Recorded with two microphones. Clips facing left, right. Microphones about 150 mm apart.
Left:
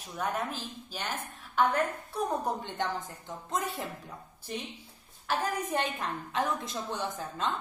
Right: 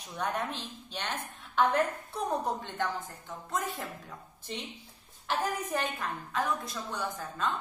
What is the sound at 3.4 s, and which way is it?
Speech, 15° left (ahead or behind).